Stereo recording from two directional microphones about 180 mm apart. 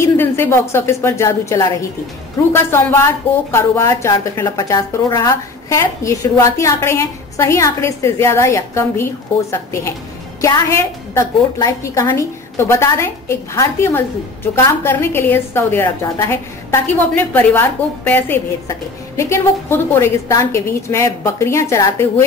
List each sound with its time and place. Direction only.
0.0 s a woman's voice: 15° left (ahead or behind)
10.4 s a woman's voice: 15° left (ahead or behind)